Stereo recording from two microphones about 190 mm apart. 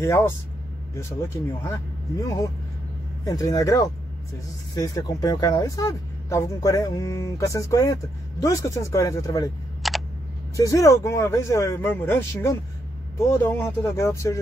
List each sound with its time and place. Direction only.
0.0 s speech: 15° left (ahead or behind)
9.8 s a sound: centre (ahead or behind)
10.5 s speech: 15° left (ahead or behind)